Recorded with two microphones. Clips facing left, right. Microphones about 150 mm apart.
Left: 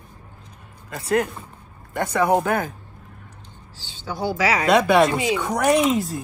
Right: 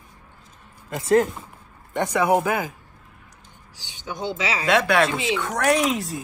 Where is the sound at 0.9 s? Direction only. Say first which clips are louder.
Right 3 dB; 25° right (ahead or behind).